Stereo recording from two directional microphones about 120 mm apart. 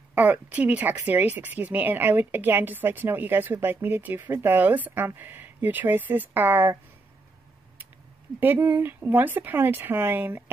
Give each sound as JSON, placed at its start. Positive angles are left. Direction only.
{"t": 0.1, "sound": "a woman's voice", "side_deg": -10}
{"t": 8.4, "sound": "a woman's voice", "side_deg": -15}